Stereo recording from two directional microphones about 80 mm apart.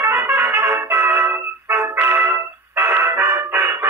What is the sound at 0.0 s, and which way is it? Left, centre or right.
Music, right.